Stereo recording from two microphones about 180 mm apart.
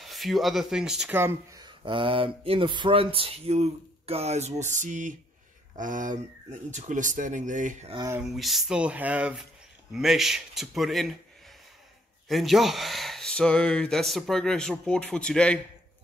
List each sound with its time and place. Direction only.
0.0 s speech: centre (ahead or behind); by 7.9 s 45° right (ahead or behind)
8.2 s speech: centre (ahead or behind)
12.3 s speech: centre (ahead or behind)